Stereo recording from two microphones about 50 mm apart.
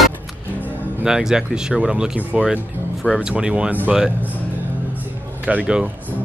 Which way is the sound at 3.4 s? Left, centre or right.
Right.